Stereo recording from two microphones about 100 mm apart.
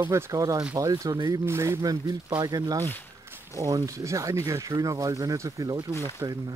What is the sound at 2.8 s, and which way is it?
Speech, 20° left (ahead or behind).